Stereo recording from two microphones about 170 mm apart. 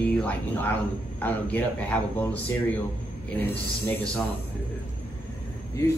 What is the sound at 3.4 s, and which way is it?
Speech, 15° left (ahead or behind).